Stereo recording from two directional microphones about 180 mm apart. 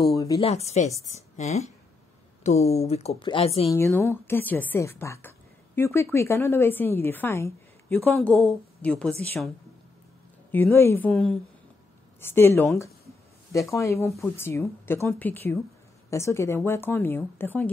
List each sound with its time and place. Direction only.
0.4 s speech: 35° left (ahead or behind)
3.7 s a woman's voice: 15° left (ahead or behind)
10.5 s a woman's voice: 15° left (ahead or behind)
14.0 s speech: centre (ahead or behind)
14.3 s a woman's voice: 15° left (ahead or behind)